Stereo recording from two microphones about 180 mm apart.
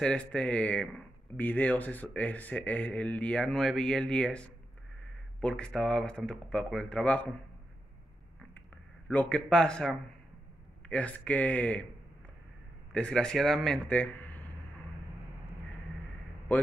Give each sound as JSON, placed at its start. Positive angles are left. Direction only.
{"t": 0.0, "sound": "speech", "side_deg": 5}
{"t": 5.6, "sound": "speech", "side_deg": 0}
{"t": 9.1, "sound": "speech", "side_deg": 10}
{"t": 12.9, "sound": "speech", "side_deg": 5}